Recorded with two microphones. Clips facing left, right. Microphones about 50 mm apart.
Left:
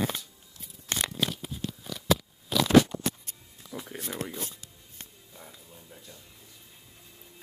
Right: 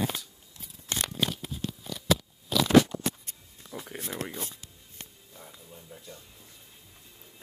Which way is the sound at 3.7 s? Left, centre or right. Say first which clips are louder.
Even; centre.